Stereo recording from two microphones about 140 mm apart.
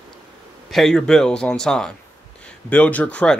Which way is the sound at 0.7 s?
Centre (ahead or behind).